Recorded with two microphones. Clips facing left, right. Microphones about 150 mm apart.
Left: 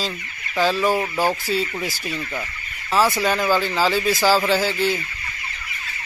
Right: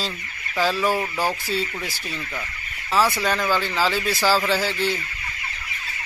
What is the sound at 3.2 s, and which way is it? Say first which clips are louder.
Speech: left 3 dB; 5° left (ahead or behind).